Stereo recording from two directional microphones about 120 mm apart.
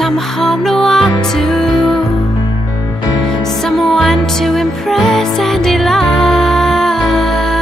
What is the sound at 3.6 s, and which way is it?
Music, 5° left (ahead or behind).